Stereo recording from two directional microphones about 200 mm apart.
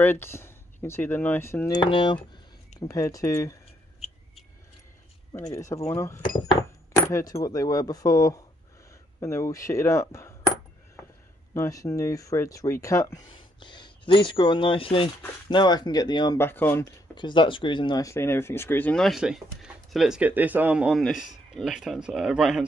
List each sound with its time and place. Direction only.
0.0 s speech: 10° left (ahead or behind)
5.5 s speech: 15° left (ahead or behind)
5.9 s keys jangling: 15° left (ahead or behind)
7.4 s speech: 20° left (ahead or behind)
11.5 s speech: 15° left (ahead or behind)
17.1 s speech: 25° left (ahead or behind); by 22.7 s 5° right (ahead or behind)